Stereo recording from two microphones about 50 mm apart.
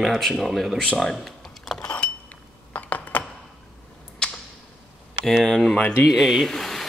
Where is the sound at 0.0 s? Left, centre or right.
Centre.